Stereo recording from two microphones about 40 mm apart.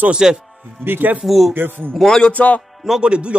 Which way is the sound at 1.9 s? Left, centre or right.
Centre.